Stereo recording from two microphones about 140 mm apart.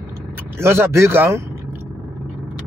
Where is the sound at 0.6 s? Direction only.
20° right (ahead or behind).